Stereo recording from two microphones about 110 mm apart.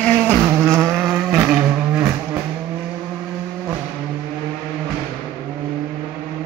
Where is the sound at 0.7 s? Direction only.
25° right (ahead or behind).